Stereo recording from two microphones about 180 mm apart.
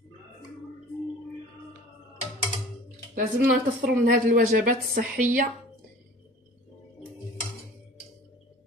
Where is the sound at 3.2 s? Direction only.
50° right (ahead or behind).